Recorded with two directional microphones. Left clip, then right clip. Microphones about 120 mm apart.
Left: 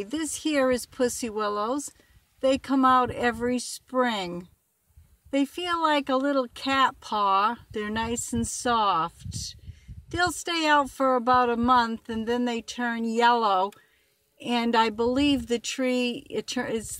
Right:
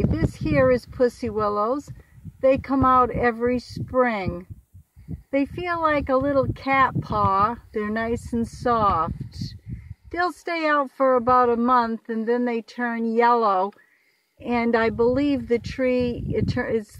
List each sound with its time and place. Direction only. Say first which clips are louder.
0.1 s speech: right 3 dB; 20° left (ahead or behind)